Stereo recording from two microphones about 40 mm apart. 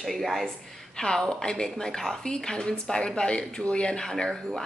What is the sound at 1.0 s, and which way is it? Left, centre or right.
Speech, centre.